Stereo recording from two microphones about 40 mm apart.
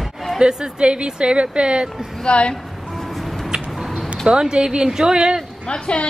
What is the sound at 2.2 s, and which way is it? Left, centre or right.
Speech, left.